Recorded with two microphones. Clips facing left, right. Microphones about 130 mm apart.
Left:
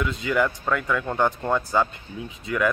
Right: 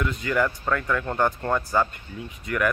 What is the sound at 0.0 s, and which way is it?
Speech, 15° left (ahead or behind).